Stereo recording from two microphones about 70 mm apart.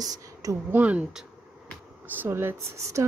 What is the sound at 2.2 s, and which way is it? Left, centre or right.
Speech, right.